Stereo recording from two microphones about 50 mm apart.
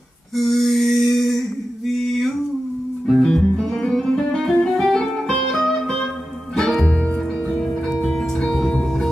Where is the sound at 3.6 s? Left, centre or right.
Centre.